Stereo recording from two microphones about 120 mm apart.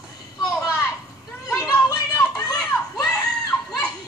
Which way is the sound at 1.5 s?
25° left (ahead or behind).